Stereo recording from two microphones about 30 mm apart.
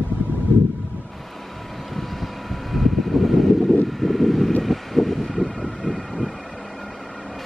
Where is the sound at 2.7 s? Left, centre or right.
Centre.